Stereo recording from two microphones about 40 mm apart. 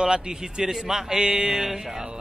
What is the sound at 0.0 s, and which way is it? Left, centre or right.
A man's voice, centre.